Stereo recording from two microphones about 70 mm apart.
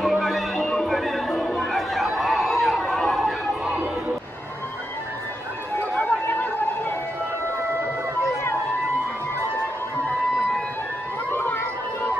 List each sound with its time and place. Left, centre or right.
0.0 s music: centre
5.8 s chatter: left
11.3 s music: left